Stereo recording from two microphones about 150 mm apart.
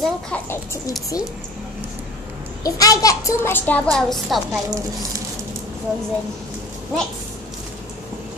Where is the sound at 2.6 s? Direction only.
25° left (ahead or behind); by 4.4 s centre (ahead or behind).